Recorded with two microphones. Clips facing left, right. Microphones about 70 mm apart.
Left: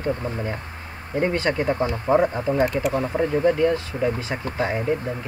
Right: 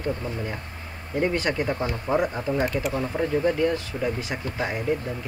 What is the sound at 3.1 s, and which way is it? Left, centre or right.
Speech, centre.